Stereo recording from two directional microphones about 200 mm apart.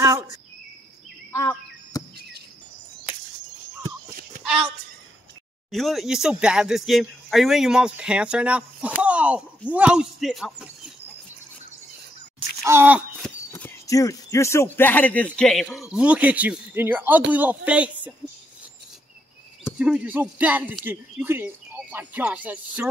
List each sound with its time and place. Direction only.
1.3 s a sound: 15° left (ahead or behind)
2.1 s chirp: 55° right (ahead or behind)
5.7 s speech: centre (ahead or behind)
12.6 s speech: 10° right (ahead or behind)
13.5 s speech: 15° left (ahead or behind); by 18.1 s 5° right (ahead or behind)
19.8 s speech: 5° right (ahead or behind)